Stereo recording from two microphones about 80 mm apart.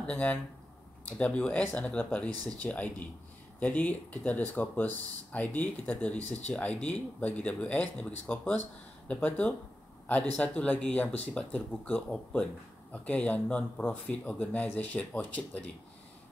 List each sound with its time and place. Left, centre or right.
0.0 s speech: centre